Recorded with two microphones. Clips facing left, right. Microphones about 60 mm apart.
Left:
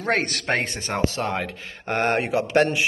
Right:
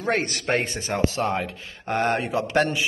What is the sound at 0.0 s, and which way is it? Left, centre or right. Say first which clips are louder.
Speech: left 1 dB; left.